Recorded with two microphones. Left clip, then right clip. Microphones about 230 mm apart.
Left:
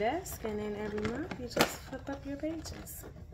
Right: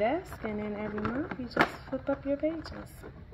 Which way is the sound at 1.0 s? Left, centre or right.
Centre.